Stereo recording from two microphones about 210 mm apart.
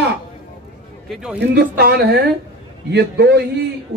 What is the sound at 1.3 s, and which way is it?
Speech, 50° right (ahead or behind).